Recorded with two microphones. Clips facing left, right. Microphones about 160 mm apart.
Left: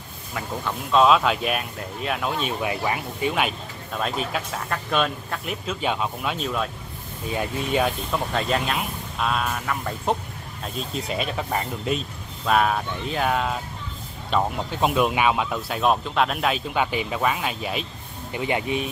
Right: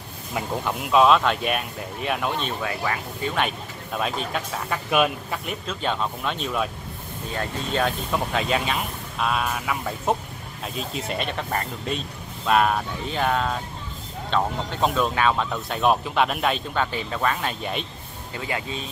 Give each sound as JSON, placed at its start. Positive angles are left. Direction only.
{"t": 0.3, "sound": "speech", "side_deg": -20}
{"t": 0.9, "sound": "speech", "side_deg": 0}
{"t": 2.6, "sound": "speech", "side_deg": 20}
{"t": 7.3, "sound": "speech", "side_deg": 10}
{"t": 8.1, "sound": "speech", "side_deg": 0}
{"t": 18.3, "sound": "speech", "side_deg": 20}